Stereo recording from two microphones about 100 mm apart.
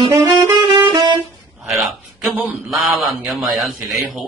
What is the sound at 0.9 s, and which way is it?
Music, 50° right (ahead or behind).